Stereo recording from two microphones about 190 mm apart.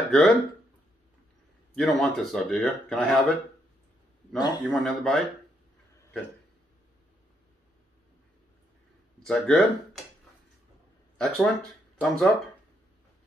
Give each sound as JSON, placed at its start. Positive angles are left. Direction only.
{"t": 0.1, "sound": "speech", "side_deg": 5}
{"t": 1.8, "sound": "speech", "side_deg": 0}
{"t": 4.4, "sound": "a man's voice", "side_deg": 20}
{"t": 4.8, "sound": "speech", "side_deg": 5}
{"t": 9.2, "sound": "speech", "side_deg": 5}
{"t": 11.1, "sound": "speech", "side_deg": 0}